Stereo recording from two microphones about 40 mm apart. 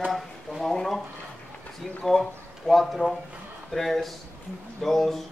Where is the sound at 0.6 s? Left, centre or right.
Centre.